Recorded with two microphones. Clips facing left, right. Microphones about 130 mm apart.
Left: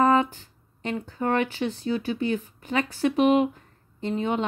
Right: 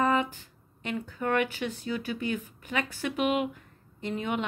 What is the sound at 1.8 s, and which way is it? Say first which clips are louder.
Speech: left 6 dB; 30° left (ahead or behind).